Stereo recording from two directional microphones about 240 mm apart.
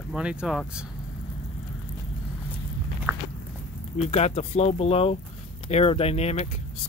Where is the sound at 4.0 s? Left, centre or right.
Left.